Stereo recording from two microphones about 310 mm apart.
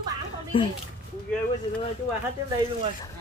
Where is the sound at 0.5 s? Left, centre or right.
Centre.